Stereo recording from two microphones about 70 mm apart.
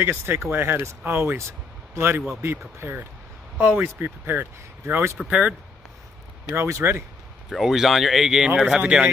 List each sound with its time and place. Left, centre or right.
0.5 s speech: right
5.2 s speech: centre
6.5 s speech: right
7.4 s speech: centre